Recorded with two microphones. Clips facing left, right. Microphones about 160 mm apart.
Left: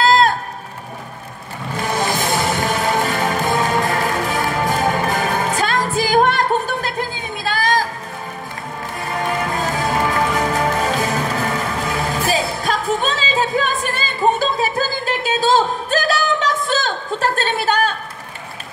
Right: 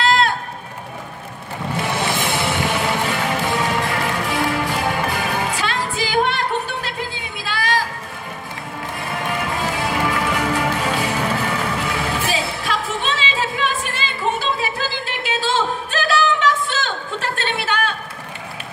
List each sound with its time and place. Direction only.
0.0 s a sound: 40° left (ahead or behind)
1.8 s music: 45° left (ahead or behind)
9.3 s music: 40° left (ahead or behind)